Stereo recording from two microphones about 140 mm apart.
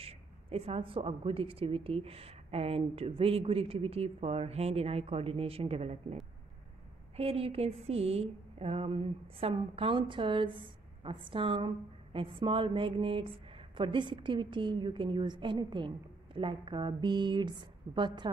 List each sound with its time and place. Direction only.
0.0 s a woman's voice: 45° right (ahead or behind)
7.2 s speech: 45° right (ahead or behind)